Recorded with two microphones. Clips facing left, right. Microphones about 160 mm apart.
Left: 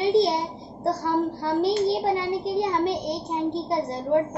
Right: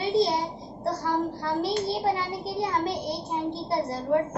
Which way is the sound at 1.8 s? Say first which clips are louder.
Left 4 dB; 25° left (ahead or behind).